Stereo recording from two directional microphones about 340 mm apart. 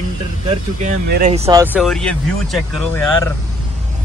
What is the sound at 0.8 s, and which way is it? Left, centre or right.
Speech, right.